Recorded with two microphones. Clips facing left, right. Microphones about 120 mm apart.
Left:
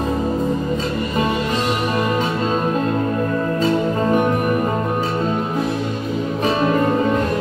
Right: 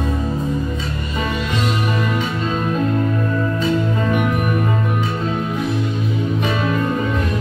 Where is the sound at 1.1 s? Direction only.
35° left (ahead or behind).